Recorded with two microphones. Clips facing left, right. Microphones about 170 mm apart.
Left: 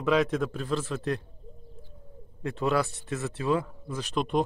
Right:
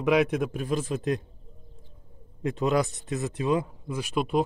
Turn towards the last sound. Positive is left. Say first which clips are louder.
# right 1 dB
turn(degrees=-5)  # may be behind; listen again after turning